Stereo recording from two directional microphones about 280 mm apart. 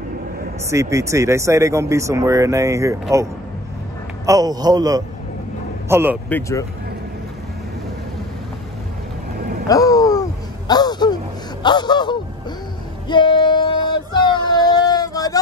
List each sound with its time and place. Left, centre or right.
0.7 s speech: centre
4.3 s speech: centre
6.2 s speech: centre
9.7 s a sound: centre
11.6 s gasp: centre
13.1 s child singing: centre